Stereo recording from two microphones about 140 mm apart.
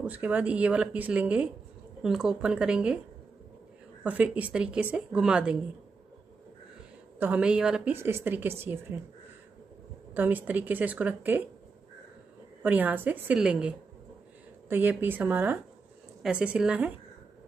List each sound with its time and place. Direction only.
0.0 s speech: 10° right (ahead or behind)
4.0 s speech: 10° right (ahead or behind)
7.2 s speech: 10° right (ahead or behind)
7.9 s speech: 15° right (ahead or behind)
10.1 s speech: 10° right (ahead or behind)
12.6 s speech: 10° right (ahead or behind)